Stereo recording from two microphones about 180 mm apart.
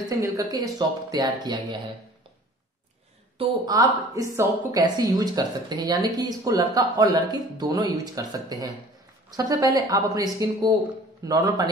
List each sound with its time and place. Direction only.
0.2 s speech: 20° right (ahead or behind)
3.3 s speech: 20° right (ahead or behind)